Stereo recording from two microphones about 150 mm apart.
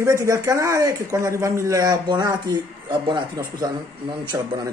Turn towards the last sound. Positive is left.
turn(degrees=-30)  # may be behind; listen again after turning